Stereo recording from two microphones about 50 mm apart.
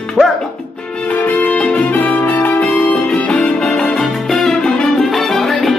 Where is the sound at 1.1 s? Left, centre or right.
Left.